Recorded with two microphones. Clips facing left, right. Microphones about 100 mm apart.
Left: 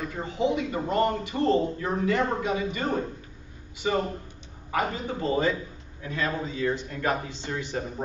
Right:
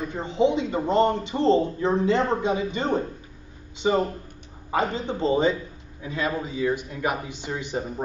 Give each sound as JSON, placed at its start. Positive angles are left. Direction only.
{"t": 0.0, "sound": "speech", "side_deg": -25}